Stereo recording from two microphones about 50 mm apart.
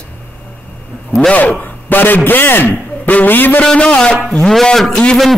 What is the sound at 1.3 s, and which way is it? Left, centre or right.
A man's voice, left.